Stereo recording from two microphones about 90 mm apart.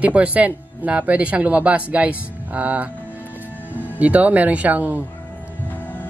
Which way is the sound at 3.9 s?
15° right (ahead or behind).